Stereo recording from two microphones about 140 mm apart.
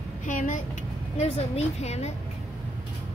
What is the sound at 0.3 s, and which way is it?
Speech, 70° left (ahead or behind).